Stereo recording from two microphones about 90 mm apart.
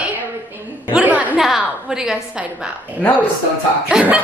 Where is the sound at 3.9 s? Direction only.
10° right (ahead or behind).